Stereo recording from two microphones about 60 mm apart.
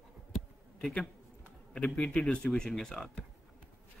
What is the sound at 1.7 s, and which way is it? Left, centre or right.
A man's voice, centre.